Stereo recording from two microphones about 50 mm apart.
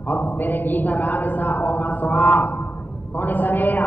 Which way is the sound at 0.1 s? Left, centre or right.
Left.